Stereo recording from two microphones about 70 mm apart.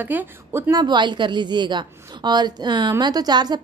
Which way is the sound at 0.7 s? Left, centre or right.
Right.